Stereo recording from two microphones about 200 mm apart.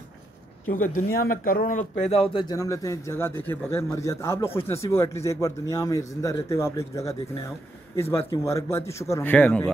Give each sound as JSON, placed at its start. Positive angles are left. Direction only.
{"t": 0.7, "sound": "speech", "side_deg": 40}
{"t": 8.0, "sound": "speech", "side_deg": 15}